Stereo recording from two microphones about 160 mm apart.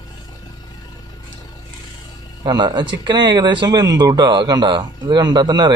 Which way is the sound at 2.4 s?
25° right (ahead or behind).